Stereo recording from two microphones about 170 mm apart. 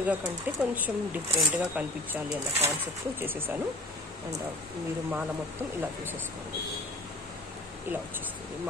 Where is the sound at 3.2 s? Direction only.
10° right (ahead or behind).